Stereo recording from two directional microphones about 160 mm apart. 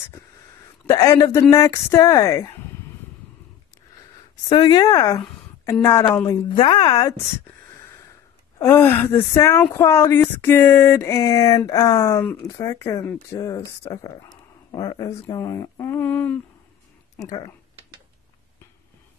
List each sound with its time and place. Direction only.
0.8 s speech: 20° left (ahead or behind)
4.5 s speech: 25° left (ahead or behind)
6.5 s speech: 30° left (ahead or behind)
8.5 s speech: 15° left (ahead or behind)